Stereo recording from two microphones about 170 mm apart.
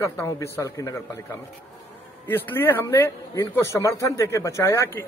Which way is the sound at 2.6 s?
15° left (ahead or behind).